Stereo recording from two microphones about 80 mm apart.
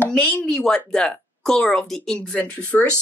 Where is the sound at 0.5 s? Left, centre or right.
Centre.